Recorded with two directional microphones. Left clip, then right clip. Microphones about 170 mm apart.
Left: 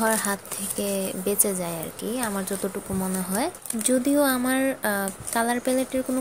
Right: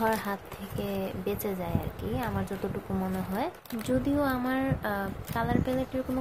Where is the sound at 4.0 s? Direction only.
35° left (ahead or behind).